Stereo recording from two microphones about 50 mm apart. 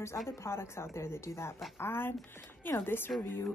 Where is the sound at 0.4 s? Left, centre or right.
Left.